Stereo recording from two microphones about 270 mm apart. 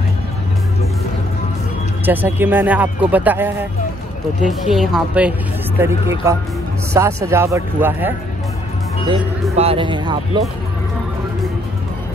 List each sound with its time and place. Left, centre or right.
2.0 s a woman's voice: centre
9.1 s speech: right